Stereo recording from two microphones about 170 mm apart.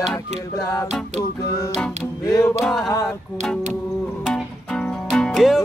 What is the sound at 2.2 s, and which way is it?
Music, 20° left (ahead or behind).